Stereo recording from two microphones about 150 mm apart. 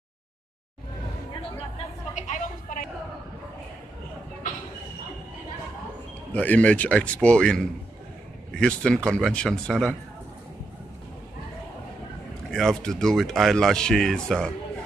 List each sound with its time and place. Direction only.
2.1 s a sound: 55° left (ahead or behind)
6.3 s a man's voice: 10° left (ahead or behind)
12.4 s speech: 5° left (ahead or behind)